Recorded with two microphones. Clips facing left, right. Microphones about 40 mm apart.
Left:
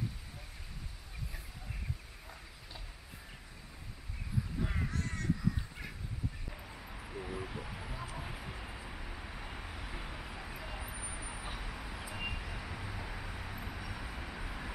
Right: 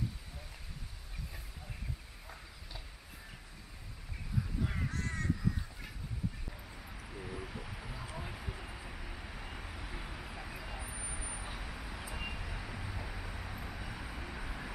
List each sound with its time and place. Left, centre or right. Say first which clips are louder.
4.6 s crow: even; centre
6.5 s bow-wow: left 2 dB; centre
7.1 s vehicle: left 3 dB; centre